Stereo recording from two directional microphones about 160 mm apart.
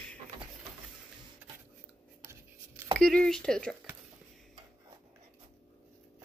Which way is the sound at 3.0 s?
5° left (ahead or behind).